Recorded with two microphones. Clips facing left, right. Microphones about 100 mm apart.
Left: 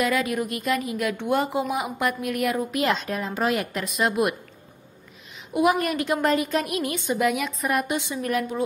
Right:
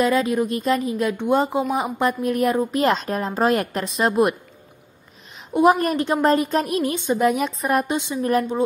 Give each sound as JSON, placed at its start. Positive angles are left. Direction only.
{"t": 0.0, "sound": "a woman's voice", "side_deg": -30}
{"t": 1.1, "sound": "speech", "side_deg": -20}
{"t": 1.7, "sound": "a woman's voice", "side_deg": -30}
{"t": 5.5, "sound": "a woman's voice", "side_deg": -35}
{"t": 7.9, "sound": "a woman's voice", "side_deg": -20}